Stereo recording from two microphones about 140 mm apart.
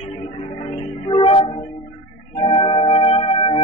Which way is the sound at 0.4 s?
45° left (ahead or behind).